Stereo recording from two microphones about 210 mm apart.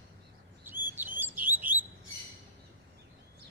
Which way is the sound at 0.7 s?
10° right (ahead or behind).